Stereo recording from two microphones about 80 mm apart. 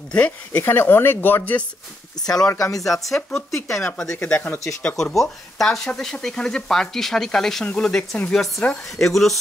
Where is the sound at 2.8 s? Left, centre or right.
Centre.